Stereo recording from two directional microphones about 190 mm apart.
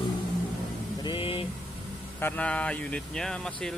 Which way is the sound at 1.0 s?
25° left (ahead or behind).